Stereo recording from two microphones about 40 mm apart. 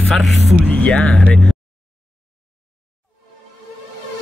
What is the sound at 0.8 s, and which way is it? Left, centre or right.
Speech, left.